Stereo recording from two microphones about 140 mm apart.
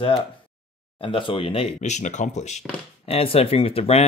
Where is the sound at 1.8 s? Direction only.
60° left (ahead or behind).